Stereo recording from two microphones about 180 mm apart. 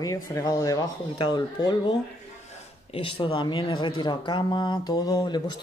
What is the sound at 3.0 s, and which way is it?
Speech, 30° left (ahead or behind).